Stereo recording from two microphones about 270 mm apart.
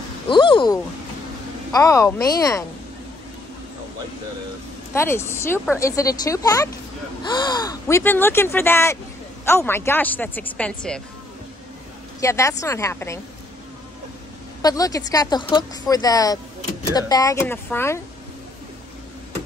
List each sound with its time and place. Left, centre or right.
0.3 s speech: centre
4.9 s speech: centre
12.2 s speech: centre
14.6 s speech: centre